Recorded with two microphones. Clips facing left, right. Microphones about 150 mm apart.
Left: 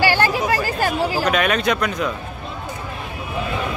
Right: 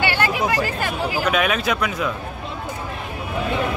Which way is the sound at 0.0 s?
35° left (ahead or behind).